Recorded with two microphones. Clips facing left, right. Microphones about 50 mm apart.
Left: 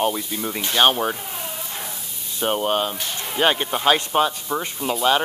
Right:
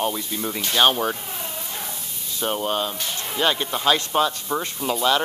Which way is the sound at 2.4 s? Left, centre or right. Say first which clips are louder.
Left 3 dB; left.